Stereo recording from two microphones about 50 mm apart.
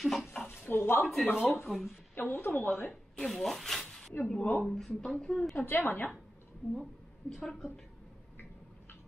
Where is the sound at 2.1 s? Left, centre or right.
Left.